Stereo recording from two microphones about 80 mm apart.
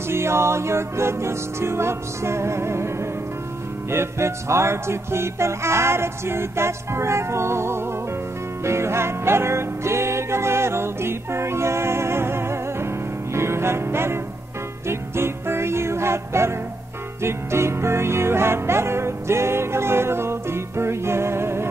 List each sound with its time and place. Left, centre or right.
0.1 s music: right